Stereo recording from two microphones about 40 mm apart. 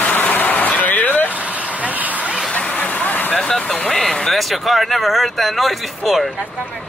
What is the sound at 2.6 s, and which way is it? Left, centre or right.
Vehicle, left.